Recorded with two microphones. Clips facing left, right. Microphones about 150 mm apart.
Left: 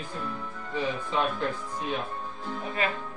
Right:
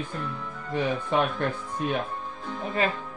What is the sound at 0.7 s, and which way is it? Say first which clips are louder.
Speech: right 4 dB; 60° right (ahead or behind).